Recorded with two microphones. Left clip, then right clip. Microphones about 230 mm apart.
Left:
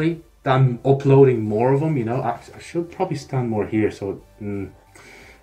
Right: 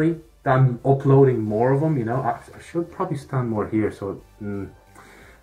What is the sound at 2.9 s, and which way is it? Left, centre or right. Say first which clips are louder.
Speech: left 2 dB; right.